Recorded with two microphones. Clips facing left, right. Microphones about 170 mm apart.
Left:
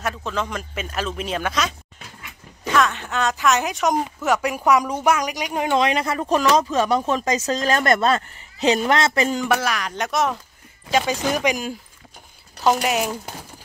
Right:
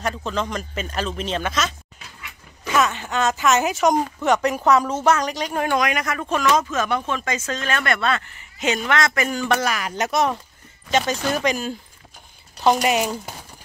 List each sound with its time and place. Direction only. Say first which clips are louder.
0.0 s speech: right 1 dB; 5° left (ahead or behind)
2.7 s speech: even; centre (ahead or behind); by 5.8 s 15° left (ahead or behind)
5.8 s speech: left 3 dB; 30° left (ahead or behind)
9.5 s speech: even; centre (ahead or behind)
12.6 s speech: right 1 dB; centre (ahead or behind)